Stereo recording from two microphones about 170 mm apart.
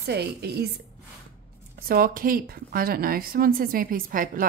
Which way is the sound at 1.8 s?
60° right (ahead or behind).